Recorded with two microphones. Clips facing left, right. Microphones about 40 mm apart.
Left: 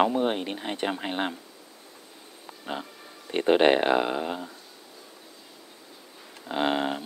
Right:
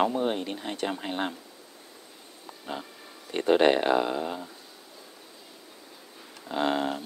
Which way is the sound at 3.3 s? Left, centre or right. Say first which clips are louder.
Left 1 dB; left.